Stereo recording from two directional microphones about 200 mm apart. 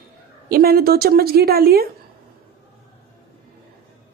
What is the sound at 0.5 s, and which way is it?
A woman's voice, 50° right (ahead or behind).